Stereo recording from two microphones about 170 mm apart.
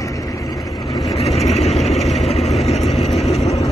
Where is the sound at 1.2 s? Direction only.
Centre (ahead or behind).